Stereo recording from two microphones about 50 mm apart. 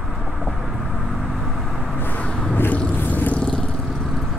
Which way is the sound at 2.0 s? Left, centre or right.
Left.